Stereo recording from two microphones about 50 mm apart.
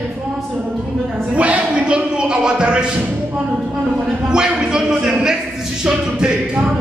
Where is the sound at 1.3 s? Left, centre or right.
Right.